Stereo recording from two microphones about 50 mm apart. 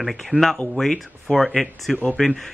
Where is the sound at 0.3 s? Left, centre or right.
Right.